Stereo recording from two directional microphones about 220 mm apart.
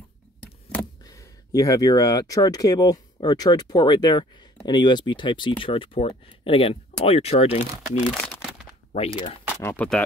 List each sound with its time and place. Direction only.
0.7 s speech: 10° left (ahead or behind); by 7.6 s 30° left (ahead or behind)
8.0 s speech: centre (ahead or behind)
8.9 s speech: 30° left (ahead or behind)
9.6 s speech: 10° left (ahead or behind)